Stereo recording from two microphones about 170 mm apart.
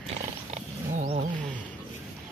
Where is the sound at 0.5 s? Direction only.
40° right (ahead or behind).